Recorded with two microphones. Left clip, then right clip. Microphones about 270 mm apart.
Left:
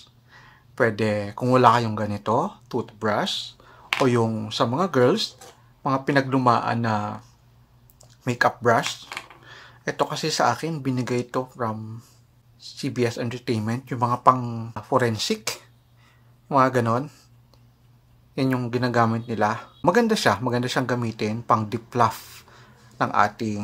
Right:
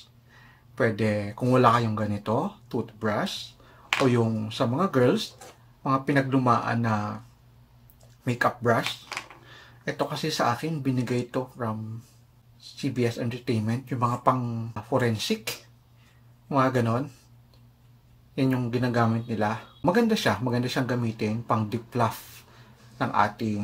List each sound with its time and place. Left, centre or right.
0.7 s speech: left
8.2 s speech: left
9.8 s speech: left
12.7 s speech: left
18.3 s speech: left